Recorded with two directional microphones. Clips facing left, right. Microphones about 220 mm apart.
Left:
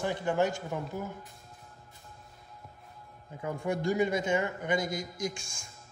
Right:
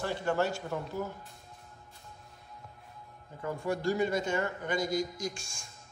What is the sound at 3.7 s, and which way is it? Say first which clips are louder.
A man's voice: left 1 dB; 20° left (ahead or behind).